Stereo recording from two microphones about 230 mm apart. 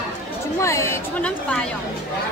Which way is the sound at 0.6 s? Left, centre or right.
Centre.